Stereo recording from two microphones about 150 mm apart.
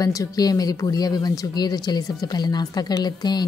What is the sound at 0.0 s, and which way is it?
A woman's voice, 25° left (ahead or behind).